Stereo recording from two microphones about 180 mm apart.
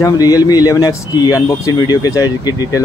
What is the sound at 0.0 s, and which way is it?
Speech, 20° left (ahead or behind).